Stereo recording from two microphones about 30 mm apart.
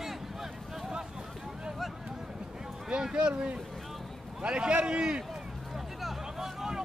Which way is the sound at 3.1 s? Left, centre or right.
Right.